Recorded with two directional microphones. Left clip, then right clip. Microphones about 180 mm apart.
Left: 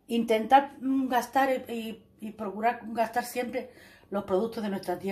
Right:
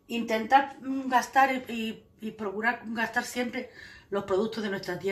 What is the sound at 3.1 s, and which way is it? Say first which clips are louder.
Speech: even; 65° left (ahead or behind).